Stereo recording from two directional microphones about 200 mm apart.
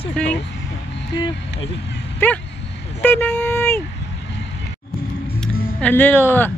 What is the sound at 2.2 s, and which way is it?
Speech, 10° left (ahead or behind).